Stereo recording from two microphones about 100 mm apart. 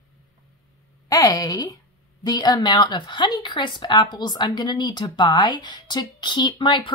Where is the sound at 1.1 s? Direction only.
35° left (ahead or behind).